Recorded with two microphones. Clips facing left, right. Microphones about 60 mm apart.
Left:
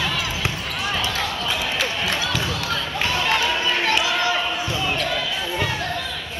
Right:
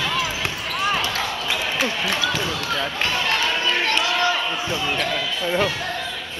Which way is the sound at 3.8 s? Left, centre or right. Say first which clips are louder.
Left 1 dB; centre.